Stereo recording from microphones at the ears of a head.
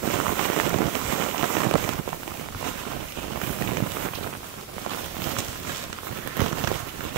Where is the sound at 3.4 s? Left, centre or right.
Right.